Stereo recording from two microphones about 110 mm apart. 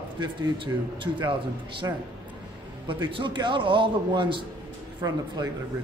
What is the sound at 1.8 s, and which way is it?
Speech, 35° right (ahead or behind).